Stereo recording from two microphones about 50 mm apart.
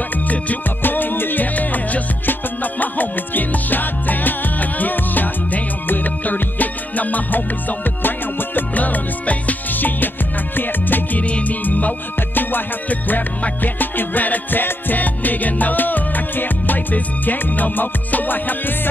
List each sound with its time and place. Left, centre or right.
0.3 s music: left
11.2 s music: left